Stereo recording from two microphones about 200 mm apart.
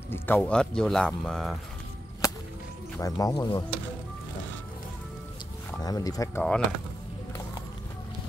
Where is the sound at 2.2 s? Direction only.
15° left (ahead or behind).